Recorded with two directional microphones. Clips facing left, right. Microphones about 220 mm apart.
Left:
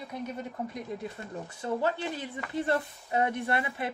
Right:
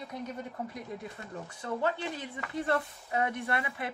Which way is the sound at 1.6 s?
30° left (ahead or behind).